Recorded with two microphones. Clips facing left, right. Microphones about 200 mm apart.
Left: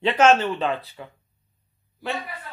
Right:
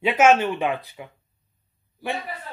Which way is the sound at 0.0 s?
10° right (ahead or behind).